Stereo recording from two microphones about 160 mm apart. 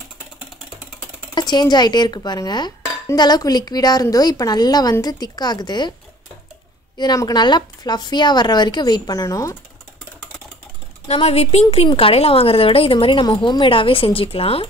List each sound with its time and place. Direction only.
1.3 s a woman's voice: 25° left (ahead or behind)
7.0 s a woman's voice: 25° left (ahead or behind)
11.1 s a woman's voice: 40° left (ahead or behind)